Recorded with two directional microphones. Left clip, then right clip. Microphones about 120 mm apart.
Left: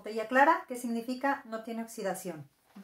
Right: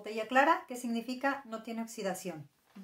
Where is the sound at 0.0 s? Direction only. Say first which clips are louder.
Left 3 dB; 5° right (ahead or behind).